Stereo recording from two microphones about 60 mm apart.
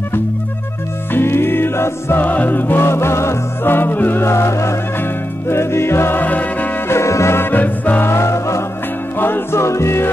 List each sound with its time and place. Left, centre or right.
1.1 s music: left
2.2 s music: left
4.3 s music: left
6.2 s music: left
6.9 s music: left
7.5 s music: left
8.1 s music: left
9.2 s music: left